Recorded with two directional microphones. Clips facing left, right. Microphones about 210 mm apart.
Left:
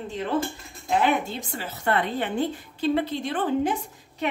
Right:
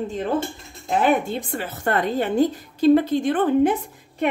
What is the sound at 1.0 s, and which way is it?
A woman's voice, 50° right (ahead or behind).